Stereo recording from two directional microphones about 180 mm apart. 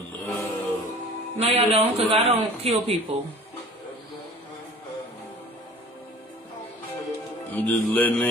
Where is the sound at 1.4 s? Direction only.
35° right (ahead or behind).